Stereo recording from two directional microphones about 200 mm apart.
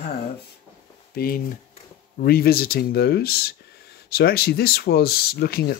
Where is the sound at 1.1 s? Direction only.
50° left (ahead or behind).